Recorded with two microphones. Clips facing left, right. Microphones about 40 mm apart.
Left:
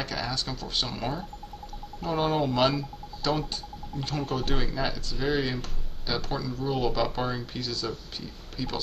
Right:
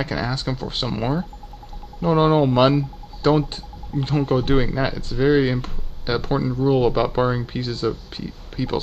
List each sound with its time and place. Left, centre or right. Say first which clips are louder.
0.0 s speech: right 7 dB; right